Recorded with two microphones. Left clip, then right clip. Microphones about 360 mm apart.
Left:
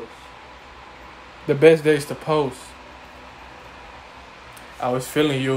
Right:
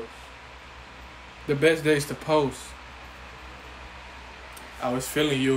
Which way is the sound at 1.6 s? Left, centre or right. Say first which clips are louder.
Left 7 dB; centre.